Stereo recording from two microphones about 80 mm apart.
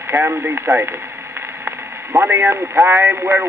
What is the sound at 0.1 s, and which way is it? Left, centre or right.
Speech, right.